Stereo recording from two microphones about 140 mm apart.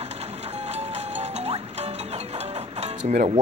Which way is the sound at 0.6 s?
50° right (ahead or behind).